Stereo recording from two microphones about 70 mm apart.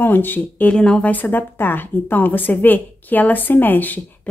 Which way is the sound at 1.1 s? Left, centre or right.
Left.